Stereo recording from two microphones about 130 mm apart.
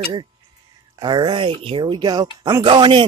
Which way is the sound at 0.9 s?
35° right (ahead or behind).